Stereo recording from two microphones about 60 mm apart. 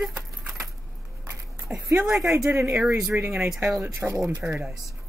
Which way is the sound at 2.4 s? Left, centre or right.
Right.